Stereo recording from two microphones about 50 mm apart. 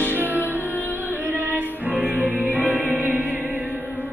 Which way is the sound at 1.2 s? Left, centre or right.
Right.